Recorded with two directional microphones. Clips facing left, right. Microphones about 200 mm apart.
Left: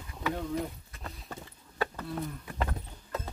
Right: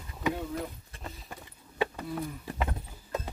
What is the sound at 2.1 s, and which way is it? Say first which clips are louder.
Speech: right 1 dB; 5° right (ahead or behind).